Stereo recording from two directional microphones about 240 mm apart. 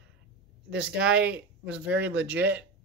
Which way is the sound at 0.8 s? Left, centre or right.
Centre.